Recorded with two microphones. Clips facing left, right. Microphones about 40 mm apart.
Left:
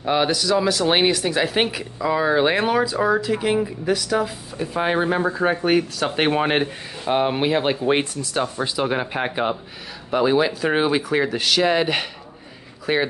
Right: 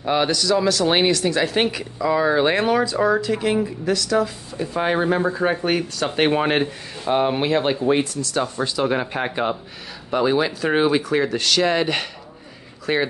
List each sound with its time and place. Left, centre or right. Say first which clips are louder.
0.0 s speech: even; centre
4.6 s speech: even; centre
7.9 s speech: right 1 dB; left
8.2 s speech: right 1 dB; centre